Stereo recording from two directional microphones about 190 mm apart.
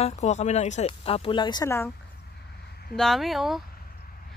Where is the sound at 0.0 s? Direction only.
35° left (ahead or behind); by 1.9 s 15° left (ahead or behind).